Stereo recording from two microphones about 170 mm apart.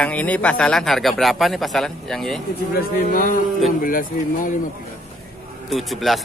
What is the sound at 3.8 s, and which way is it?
Speech, 55° left (ahead or behind).